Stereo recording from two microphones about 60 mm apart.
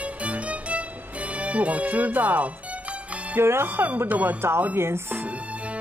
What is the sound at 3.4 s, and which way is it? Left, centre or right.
Speech, right.